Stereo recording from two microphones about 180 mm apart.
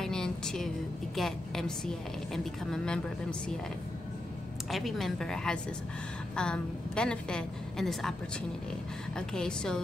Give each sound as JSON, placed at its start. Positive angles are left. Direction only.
{"t": 0.0, "sound": "a sound", "side_deg": 5}
{"t": 1.1, "sound": "a woman's voice", "side_deg": 0}
{"t": 4.6, "sound": "a woman's voice", "side_deg": 0}
{"t": 9.1, "sound": "a woman's voice", "side_deg": 5}